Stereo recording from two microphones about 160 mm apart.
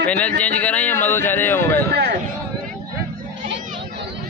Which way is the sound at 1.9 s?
90° right.